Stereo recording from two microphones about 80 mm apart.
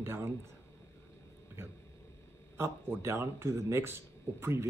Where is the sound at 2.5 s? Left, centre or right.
Right.